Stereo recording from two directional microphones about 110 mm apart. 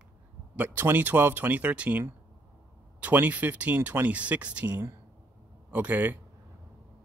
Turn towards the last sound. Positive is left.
turn(degrees=-15)  # may be behind; listen again after turning